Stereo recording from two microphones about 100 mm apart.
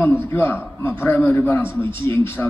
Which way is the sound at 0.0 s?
20° left (ahead or behind).